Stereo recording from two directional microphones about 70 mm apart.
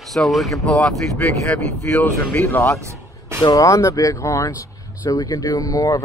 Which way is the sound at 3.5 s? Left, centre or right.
Left.